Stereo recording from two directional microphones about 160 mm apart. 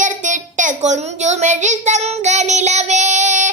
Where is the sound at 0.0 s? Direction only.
50° right (ahead or behind).